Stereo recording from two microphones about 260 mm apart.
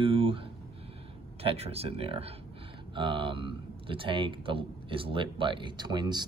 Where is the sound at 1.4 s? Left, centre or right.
Right.